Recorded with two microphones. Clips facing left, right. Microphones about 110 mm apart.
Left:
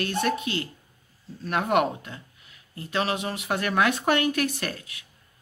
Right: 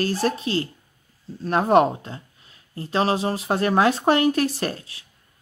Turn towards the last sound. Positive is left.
turn(degrees=-30)  # may be behind; listen again after turning